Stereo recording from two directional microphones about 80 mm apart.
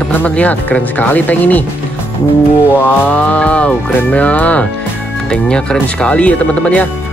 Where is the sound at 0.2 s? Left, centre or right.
Centre.